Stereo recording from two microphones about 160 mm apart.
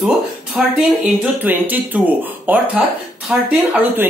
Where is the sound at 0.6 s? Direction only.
5° right (ahead or behind).